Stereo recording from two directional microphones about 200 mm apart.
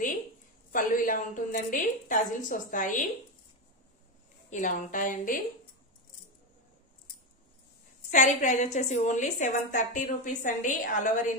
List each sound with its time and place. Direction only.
0.7 s a woman's voice: 45° left (ahead or behind)
4.5 s a woman's voice: 40° left (ahead or behind)
8.1 s a woman's voice: 40° left (ahead or behind)